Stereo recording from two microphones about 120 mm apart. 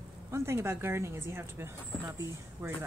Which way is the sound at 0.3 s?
20° right (ahead or behind).